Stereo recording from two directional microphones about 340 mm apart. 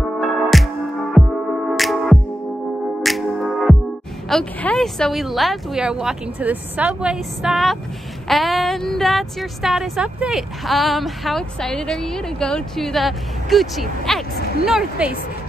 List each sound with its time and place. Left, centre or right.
0.2 s music: centre
4.3 s speech: centre
14.4 s a sound: left
14.7 s speech: centre